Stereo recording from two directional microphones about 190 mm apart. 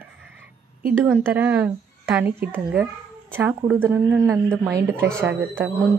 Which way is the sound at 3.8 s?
10° right (ahead or behind).